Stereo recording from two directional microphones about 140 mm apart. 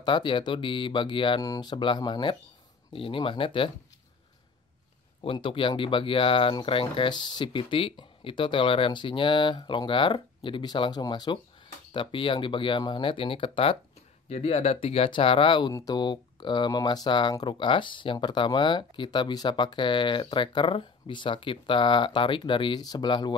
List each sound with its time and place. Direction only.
0.0 s speech: 35° left (ahead or behind)
5.2 s speech: 40° left (ahead or behind)